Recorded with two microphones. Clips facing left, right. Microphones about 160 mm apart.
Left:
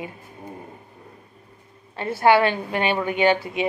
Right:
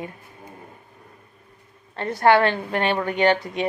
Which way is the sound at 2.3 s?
10° left (ahead or behind).